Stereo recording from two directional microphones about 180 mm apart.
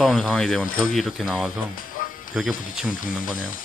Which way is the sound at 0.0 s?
Centre (ahead or behind).